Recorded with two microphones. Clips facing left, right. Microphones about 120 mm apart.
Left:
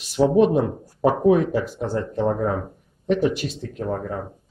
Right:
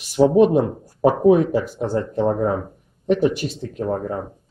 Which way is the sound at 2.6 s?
5° right (ahead or behind).